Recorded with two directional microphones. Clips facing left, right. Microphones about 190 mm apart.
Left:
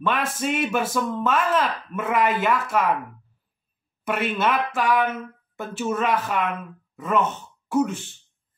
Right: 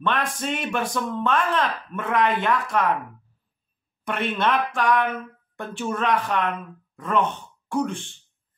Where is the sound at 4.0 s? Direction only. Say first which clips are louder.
Left 1 dB; 5° left (ahead or behind).